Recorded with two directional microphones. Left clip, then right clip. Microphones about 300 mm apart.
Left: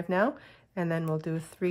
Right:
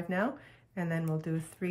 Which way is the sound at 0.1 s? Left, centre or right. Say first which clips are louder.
Left 6 dB; centre.